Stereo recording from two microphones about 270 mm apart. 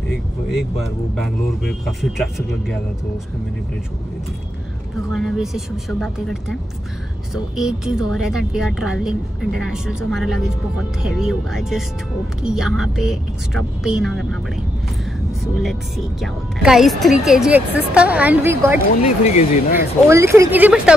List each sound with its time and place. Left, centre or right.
0.5 s speech: centre
5.1 s speech: centre
15.5 s speech: centre
19.0 s speech: left
20.1 s speech: centre